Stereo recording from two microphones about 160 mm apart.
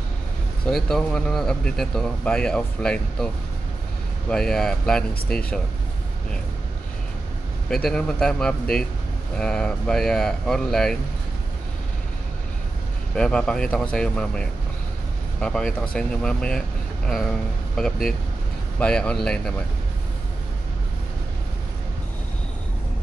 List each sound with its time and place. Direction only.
0.7 s speech: 5° left (ahead or behind)
4.3 s speech: 5° left (ahead or behind)
7.7 s speech: 5° left (ahead or behind)
13.1 s speech: 5° left (ahead or behind)